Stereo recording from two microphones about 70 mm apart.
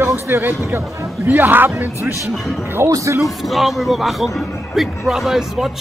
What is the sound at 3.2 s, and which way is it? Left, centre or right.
Speech, centre.